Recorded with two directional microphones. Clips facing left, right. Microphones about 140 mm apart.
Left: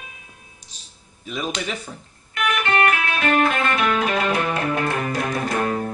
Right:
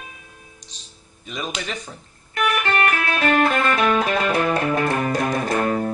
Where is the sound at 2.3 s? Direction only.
40° right (ahead or behind).